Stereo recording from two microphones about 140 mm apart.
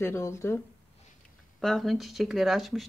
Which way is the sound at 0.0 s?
20° left (ahead or behind).